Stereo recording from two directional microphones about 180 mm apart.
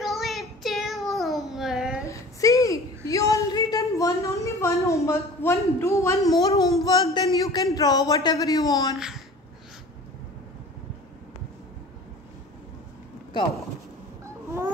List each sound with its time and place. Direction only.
0.0 s child singing: centre (ahead or behind)
2.0 s a sound: 20° left (ahead or behind)
6.8 s a man's voice: 20° left (ahead or behind)
8.9 s a child's voice: centre (ahead or behind)